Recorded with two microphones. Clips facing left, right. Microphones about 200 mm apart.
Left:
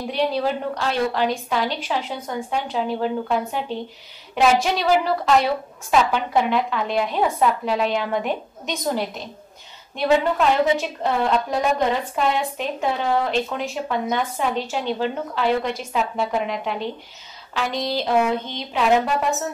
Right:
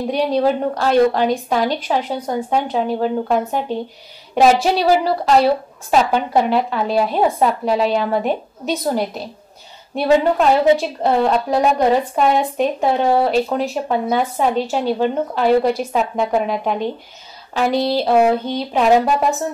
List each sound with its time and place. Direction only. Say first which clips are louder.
0.1 s a woman's voice: right 5 dB; 40° right (ahead or behind)
4.4 s a woman's voice: right 5 dB; 35° right (ahead or behind)